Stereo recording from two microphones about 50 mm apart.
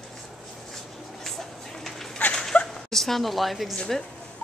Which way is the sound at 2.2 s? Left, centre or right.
Left.